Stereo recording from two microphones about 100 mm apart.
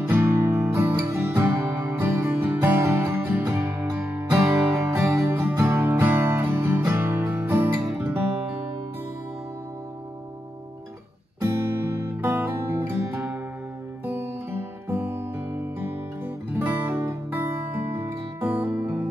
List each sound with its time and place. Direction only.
0.0 s music: 25° right (ahead or behind)
11.3 s music: 25° right (ahead or behind)
15.0 s music: 25° right (ahead or behind)